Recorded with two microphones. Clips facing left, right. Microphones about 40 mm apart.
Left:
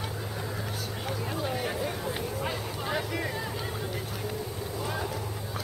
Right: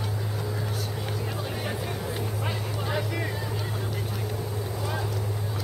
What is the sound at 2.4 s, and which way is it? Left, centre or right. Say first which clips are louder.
Vehicle: right 1 dB; centre.